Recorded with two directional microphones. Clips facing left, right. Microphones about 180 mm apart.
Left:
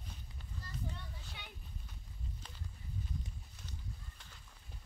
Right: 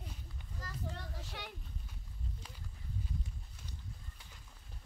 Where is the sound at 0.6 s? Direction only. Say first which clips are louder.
Right 2 dB; 85° right.